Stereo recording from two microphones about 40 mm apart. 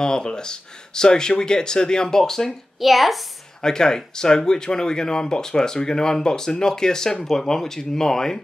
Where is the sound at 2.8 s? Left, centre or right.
Centre.